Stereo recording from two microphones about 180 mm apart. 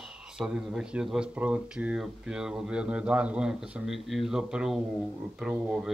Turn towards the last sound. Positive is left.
turn(degrees=-5)  # may be behind; listen again after turning